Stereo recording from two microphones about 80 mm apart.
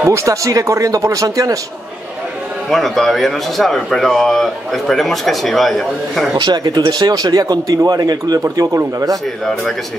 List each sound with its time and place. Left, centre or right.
0.1 s speech: right
2.7 s speech: centre
6.3 s speech: right